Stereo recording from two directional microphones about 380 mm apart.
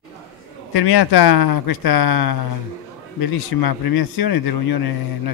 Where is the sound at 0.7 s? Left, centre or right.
Left.